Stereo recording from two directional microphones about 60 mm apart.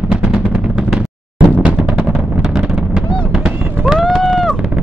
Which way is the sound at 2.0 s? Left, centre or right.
Centre.